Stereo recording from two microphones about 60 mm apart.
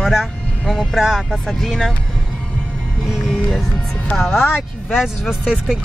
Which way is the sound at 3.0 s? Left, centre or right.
Centre.